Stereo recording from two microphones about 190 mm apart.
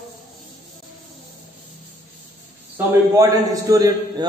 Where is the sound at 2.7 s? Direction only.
15° right (ahead or behind).